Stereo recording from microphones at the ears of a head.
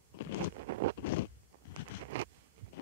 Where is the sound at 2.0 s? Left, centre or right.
Right.